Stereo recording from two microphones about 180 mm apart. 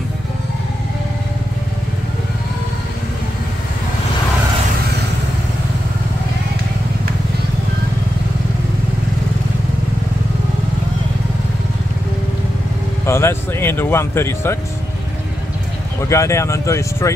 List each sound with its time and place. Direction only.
13.0 s speech: 15° left (ahead or behind)
16.1 s speech: 15° left (ahead or behind)